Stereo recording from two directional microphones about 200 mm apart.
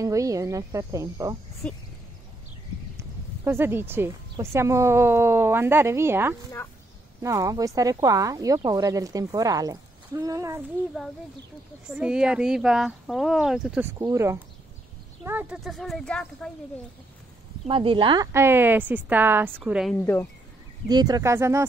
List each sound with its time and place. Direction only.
0.0 s a woman's voice: 15° right (ahead or behind)
1.6 s speech: 5° left (ahead or behind)
3.0 s a woman's voice: 10° right (ahead or behind)
11.9 s speech: 5° right (ahead or behind)
17.6 s a woman's voice: 25° right (ahead or behind); by 20.1 s centre (ahead or behind)
20.9 s a woman's voice: 20° right (ahead or behind)